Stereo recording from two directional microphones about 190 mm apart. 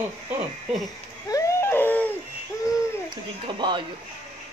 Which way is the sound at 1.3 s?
15° left (ahead or behind).